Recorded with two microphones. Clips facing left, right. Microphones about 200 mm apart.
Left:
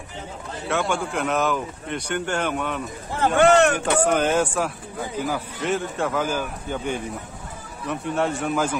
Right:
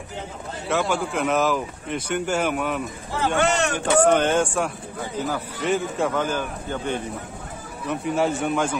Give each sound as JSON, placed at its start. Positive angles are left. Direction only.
{"t": 0.7, "sound": "speech", "side_deg": 0}
{"t": 3.3, "sound": "speech", "side_deg": 60}
{"t": 4.0, "sound": "speech", "side_deg": 5}
{"t": 7.9, "sound": "speech", "side_deg": 0}